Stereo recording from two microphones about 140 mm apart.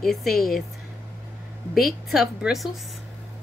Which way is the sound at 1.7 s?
Centre (ahead or behind).